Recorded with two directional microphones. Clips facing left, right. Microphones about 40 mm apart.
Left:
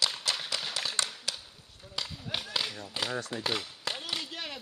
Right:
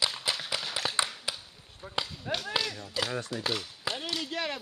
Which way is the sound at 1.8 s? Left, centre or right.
Right.